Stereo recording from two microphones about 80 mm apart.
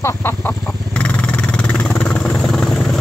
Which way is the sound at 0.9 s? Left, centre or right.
Centre.